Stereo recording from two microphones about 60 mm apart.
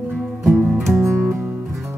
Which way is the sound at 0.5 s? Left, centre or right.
Right.